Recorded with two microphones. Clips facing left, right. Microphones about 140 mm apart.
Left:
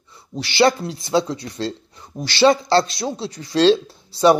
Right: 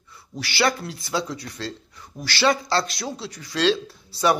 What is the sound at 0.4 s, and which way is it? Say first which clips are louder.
Speech: left 7 dB; 25° left (ahead or behind).